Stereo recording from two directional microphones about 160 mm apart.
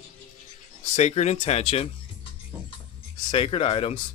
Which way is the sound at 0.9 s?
45° left (ahead or behind).